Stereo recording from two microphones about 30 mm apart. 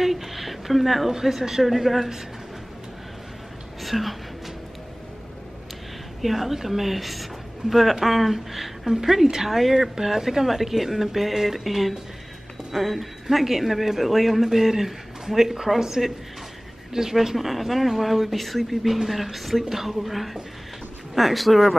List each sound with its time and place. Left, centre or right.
0.0 s a sound: centre
1.1 s speech: centre
1.6 s speech: centre
3.8 s a woman's voice: centre
6.2 s speech: centre